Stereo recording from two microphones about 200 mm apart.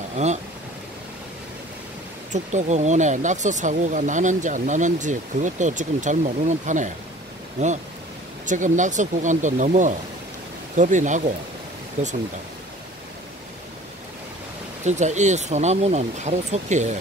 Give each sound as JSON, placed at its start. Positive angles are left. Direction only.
{"t": 0.1, "sound": "speech", "side_deg": -35}
{"t": 2.3, "sound": "speech", "side_deg": -35}
{"t": 14.9, "sound": "speech", "side_deg": -35}